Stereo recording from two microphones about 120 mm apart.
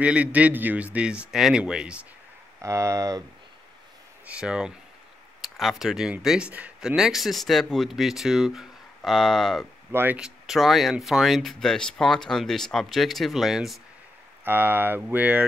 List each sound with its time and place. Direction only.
0.0 s a man's voice: 10° right (ahead or behind)
2.6 s speech: 25° right (ahead or behind)
4.3 s a man's voice: 10° right (ahead or behind)
9.9 s speech: 10° right (ahead or behind)
14.4 s a man's voice: 15° right (ahead or behind)